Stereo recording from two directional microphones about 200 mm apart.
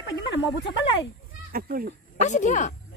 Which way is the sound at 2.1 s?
35° left (ahead or behind).